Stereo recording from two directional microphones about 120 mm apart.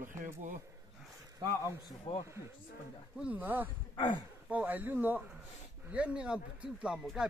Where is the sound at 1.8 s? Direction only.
45° left (ahead or behind).